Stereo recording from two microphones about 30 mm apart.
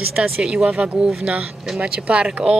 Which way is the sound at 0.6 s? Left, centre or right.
Right.